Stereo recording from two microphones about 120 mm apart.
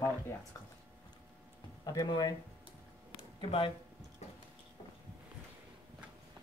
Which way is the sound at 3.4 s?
45° left (ahead or behind).